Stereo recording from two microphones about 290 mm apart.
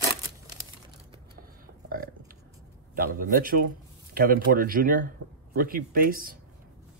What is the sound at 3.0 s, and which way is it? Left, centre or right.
Speech, right.